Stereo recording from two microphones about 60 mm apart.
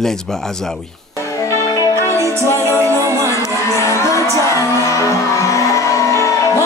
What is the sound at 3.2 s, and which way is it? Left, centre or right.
Music, left.